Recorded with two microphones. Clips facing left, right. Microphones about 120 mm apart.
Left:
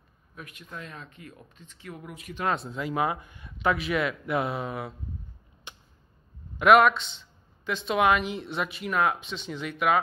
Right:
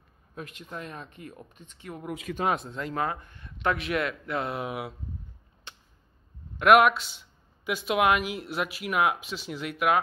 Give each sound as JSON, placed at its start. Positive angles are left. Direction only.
{"t": 0.3, "sound": "speech", "side_deg": -35}
{"t": 2.5, "sound": "speech", "side_deg": 0}
{"t": 4.6, "sound": "speech", "side_deg": -5}
{"t": 5.7, "sound": "a sound", "side_deg": 15}
{"t": 6.6, "sound": "speech", "side_deg": -5}